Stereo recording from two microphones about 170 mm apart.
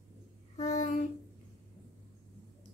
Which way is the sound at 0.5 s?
40° left (ahead or behind).